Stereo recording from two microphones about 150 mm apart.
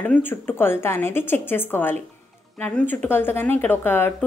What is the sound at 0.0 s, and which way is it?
A woman's voice, 10° left (ahead or behind).